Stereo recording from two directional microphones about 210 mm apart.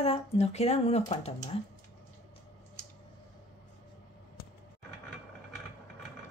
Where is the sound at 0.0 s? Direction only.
30° left (ahead or behind).